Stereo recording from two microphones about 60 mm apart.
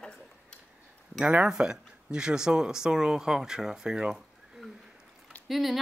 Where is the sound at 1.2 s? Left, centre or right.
Centre.